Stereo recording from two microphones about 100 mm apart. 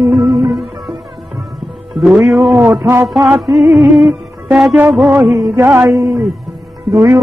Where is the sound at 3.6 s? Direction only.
20° right (ahead or behind).